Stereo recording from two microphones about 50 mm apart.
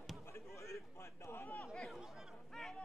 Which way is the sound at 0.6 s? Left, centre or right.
Left.